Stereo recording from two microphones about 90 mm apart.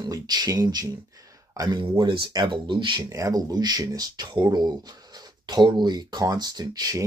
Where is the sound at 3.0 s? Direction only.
35° right (ahead or behind).